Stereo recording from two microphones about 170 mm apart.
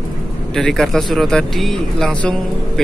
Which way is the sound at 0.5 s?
Centre (ahead or behind).